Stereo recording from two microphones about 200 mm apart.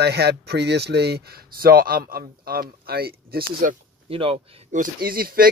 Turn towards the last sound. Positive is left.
turn(degrees=-45)  # may be behind; listen again after turning